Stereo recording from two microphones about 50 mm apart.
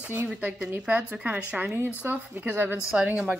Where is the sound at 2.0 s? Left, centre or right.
Right.